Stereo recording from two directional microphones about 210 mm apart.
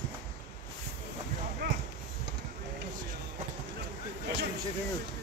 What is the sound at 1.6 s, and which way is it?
Clip-clop, 50° right (ahead or behind).